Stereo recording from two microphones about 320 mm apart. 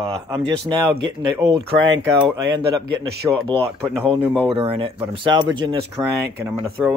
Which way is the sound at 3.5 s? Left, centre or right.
Centre.